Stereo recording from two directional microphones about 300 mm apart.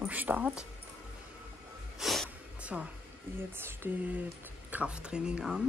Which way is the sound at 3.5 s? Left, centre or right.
Centre.